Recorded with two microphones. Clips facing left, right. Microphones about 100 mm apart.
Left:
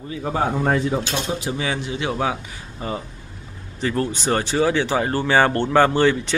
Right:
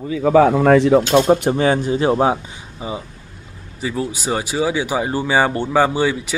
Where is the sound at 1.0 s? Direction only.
50° right (ahead or behind); by 2.3 s 35° right (ahead or behind).